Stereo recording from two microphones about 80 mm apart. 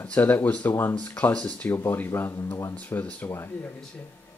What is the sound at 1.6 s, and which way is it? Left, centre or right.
Speech, left.